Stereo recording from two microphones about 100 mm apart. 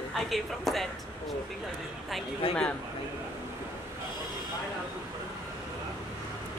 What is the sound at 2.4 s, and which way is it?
Speech, 65° left (ahead or behind).